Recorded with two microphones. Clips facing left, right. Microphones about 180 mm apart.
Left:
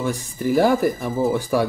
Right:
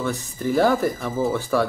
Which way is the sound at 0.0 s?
15° left (ahead or behind).